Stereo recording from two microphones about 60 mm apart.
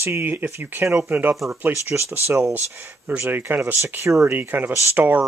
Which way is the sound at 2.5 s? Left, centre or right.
Right.